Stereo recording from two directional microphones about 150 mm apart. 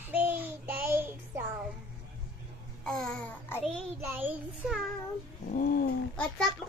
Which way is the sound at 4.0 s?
15° right (ahead or behind).